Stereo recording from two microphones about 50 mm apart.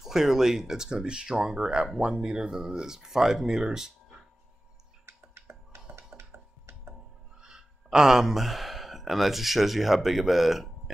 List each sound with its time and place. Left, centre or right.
0.0 s speech: centre
5.0 s a sound: right
7.4 s speech: centre